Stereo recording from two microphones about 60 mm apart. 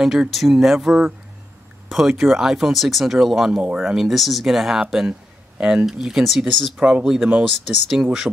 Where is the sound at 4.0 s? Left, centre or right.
Centre.